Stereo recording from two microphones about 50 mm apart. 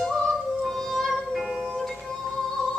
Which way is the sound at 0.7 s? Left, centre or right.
Centre.